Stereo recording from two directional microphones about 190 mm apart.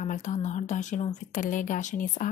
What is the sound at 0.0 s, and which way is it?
A woman's voice, 40° left (ahead or behind).